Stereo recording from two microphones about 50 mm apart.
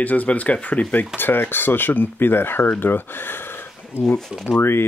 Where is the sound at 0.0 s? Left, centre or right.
Left.